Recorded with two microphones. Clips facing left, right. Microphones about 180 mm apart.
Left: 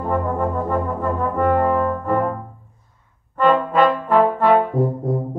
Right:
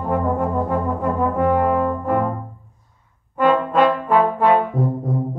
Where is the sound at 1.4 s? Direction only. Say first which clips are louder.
Left 1 dB; 10° right (ahead or behind).